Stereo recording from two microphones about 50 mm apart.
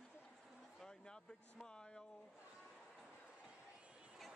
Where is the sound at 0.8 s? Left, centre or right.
Centre.